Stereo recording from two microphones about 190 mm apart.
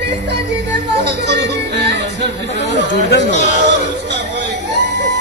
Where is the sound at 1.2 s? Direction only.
60° right (ahead or behind).